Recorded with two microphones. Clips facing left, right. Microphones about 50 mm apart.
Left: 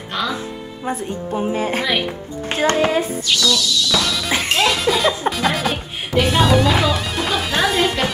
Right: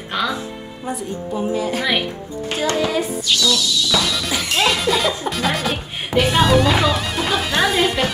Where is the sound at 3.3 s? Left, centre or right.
Centre.